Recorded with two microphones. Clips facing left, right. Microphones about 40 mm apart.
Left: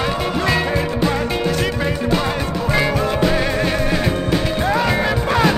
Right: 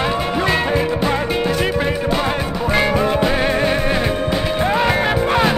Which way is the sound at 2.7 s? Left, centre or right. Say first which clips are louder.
Right 2 dB; right.